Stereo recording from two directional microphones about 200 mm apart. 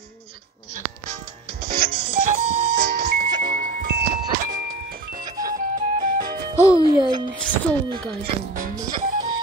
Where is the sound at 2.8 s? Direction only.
50° right (ahead or behind).